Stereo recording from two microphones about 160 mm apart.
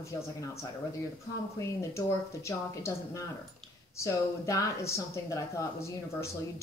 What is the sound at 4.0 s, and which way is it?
Speech, 20° left (ahead or behind).